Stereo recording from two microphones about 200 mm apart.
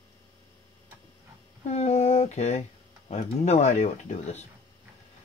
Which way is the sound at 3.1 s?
35° left (ahead or behind).